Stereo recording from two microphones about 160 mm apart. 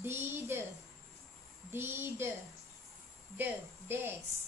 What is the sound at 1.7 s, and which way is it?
Speech, 15° right (ahead or behind).